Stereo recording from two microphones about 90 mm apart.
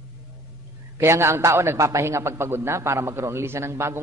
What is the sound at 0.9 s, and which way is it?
A man's voice, 30° right (ahead or behind).